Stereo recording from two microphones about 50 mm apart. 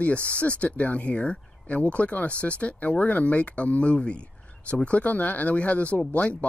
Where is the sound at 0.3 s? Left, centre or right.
Left.